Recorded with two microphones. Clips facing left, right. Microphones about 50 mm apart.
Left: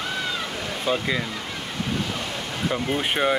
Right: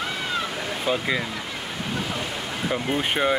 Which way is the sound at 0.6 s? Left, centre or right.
Centre.